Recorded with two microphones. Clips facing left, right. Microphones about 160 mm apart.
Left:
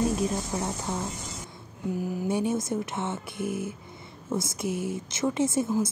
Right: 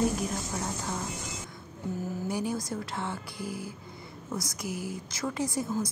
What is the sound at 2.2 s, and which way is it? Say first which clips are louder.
A woman's voice: left 5 dB; 25° left (ahead or behind).